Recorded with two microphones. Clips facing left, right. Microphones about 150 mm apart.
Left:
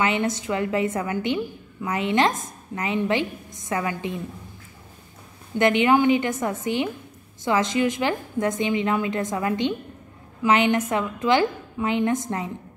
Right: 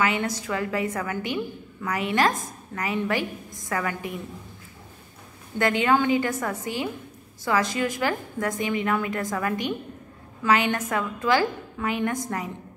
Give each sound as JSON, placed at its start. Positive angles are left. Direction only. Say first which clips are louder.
{"t": 0.0, "sound": "a woman's voice", "louder": "left 2 dB", "side_deg": 25}
{"t": 5.6, "sound": "a woman's voice", "louder": "left 3 dB", "side_deg": 20}